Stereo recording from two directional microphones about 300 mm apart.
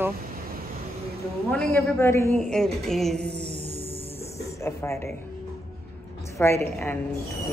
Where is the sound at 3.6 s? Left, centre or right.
Right.